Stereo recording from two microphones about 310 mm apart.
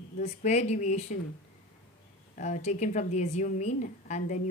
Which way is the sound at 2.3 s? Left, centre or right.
Left.